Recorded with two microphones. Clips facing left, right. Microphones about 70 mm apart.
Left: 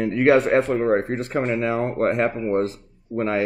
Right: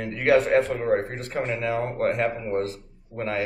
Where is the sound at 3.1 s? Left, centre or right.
Left.